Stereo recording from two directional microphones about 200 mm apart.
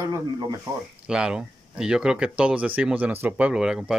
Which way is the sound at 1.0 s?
5° right (ahead or behind).